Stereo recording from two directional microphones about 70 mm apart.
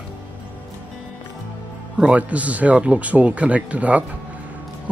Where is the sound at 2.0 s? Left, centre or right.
Centre.